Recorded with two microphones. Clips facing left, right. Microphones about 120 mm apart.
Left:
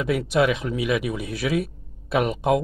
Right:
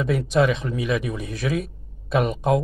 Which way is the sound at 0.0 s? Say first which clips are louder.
Right 1 dB; 5° left (ahead or behind).